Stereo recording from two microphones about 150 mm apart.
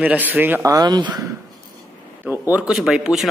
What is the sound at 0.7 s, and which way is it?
Speech, 25° right (ahead or behind).